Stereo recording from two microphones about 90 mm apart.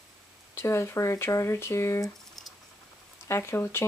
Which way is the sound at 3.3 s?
30° left (ahead or behind).